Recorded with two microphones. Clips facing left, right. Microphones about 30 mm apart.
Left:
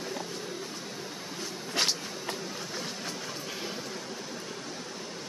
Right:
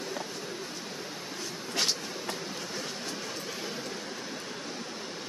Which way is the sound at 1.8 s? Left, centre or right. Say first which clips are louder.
Left 1 dB; left.